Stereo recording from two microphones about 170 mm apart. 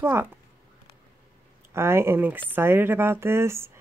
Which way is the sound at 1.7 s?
15° right (ahead or behind).